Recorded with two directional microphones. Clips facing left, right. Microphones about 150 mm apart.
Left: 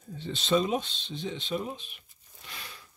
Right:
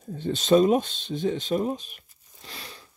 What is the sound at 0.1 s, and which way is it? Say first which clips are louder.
Speech: right 7 dB; 45° right (ahead or behind).